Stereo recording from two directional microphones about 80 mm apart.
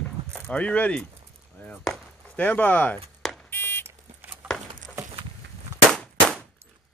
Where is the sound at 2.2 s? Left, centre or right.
Centre.